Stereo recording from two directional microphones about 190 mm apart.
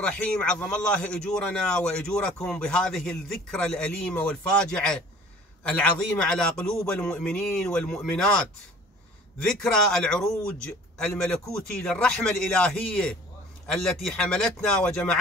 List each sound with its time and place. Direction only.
0.0 s a man's voice: 5° left (ahead or behind)